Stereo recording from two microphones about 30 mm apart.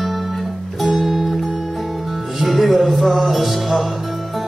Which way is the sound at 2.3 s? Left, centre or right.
Centre.